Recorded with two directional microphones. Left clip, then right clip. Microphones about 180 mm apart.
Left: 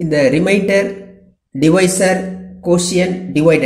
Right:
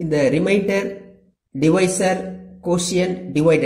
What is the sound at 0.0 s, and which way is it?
Speech, 15° right (ahead or behind).